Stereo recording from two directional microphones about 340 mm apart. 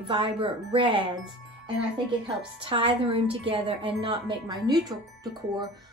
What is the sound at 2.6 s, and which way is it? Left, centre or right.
Speech, centre.